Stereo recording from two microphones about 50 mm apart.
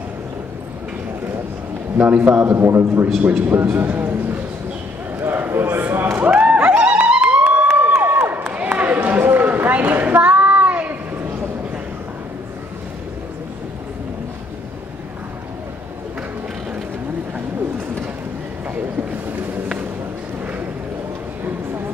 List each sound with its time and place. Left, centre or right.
2.0 s a man's voice: right
2.5 s a man's voice: right
3.2 s a man's voice: right
5.2 s a sound: right
6.1 s music: right
7.7 s crowd: right
8.5 s a sound: right